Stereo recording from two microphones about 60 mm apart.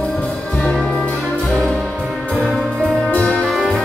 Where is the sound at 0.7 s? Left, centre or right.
Centre.